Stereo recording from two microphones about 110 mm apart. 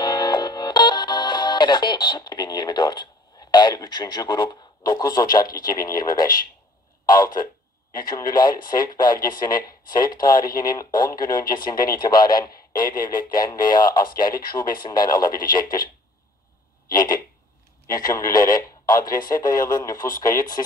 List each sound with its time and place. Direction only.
0.0 s speech: 40° left (ahead or behind)
7.9 s speech: 40° left (ahead or behind)
17.8 s speech: 35° left (ahead or behind)